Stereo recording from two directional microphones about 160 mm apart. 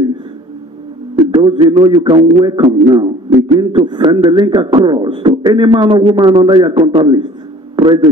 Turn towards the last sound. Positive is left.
turn(degrees=-30)  # may be behind; listen again after turning